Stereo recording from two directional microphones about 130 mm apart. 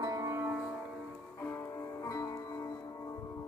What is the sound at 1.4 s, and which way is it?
Music, 20° left (ahead or behind).